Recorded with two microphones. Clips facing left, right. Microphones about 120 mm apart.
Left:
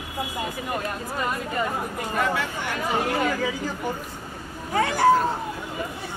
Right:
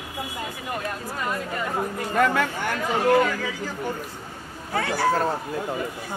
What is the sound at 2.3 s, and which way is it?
Speech, 50° right (ahead or behind).